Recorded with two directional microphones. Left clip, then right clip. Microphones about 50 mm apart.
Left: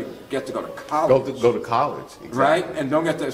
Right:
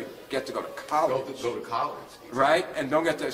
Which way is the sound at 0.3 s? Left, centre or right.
Right.